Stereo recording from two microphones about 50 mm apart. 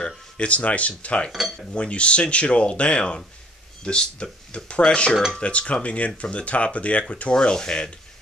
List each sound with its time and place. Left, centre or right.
0.0 s speech: left
1.3 s cutlery: centre
1.7 s speech: left